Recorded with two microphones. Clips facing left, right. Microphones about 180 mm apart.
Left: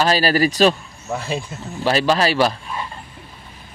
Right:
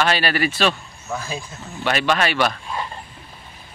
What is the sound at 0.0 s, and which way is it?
Speech, 35° left (ahead or behind).